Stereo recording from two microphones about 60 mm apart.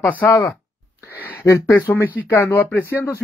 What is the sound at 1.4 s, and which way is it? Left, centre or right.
Speech, left.